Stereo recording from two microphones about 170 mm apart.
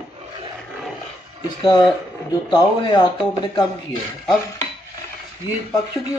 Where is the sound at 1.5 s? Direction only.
30° left (ahead or behind).